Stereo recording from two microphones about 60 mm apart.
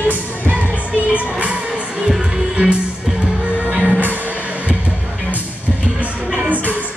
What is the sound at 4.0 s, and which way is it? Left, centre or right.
Music, right.